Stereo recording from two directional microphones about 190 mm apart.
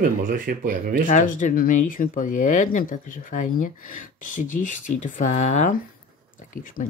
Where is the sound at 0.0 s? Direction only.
50° right (ahead or behind).